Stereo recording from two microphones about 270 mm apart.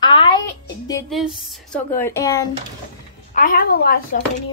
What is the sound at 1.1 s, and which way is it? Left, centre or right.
Speech, centre.